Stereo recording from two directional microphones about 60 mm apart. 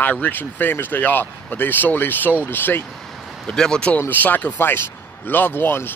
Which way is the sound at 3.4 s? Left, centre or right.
Centre.